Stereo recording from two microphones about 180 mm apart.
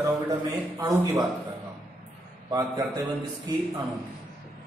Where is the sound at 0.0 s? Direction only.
20° right (ahead or behind).